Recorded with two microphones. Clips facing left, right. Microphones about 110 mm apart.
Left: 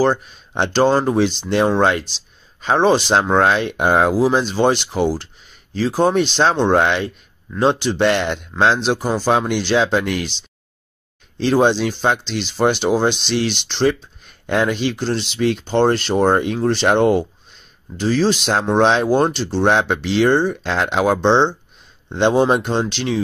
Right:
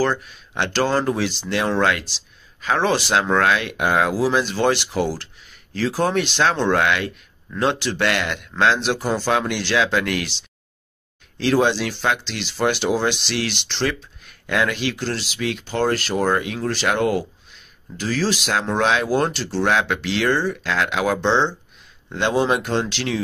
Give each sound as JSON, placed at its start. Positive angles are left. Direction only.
{"t": 0.0, "sound": "speech", "side_deg": 25}
{"t": 4.1, "sound": "speech", "side_deg": 20}
{"t": 7.5, "sound": "speech", "side_deg": 15}
{"t": 11.3, "sound": "speech", "side_deg": 20}
{"t": 14.4, "sound": "a sound", "side_deg": 35}
{"t": 14.7, "sound": "speech", "side_deg": 20}